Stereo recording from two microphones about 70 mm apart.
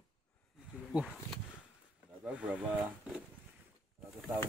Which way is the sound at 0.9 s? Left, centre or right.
Right.